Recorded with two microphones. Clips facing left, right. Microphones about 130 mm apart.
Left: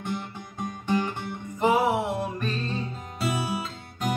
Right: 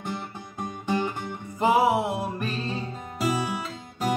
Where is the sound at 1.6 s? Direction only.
10° right (ahead or behind).